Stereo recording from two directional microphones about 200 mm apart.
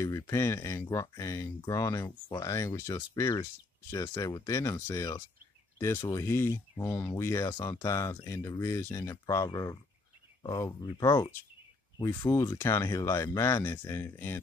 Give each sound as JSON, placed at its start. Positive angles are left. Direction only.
{"t": 0.0, "sound": "speech", "side_deg": 15}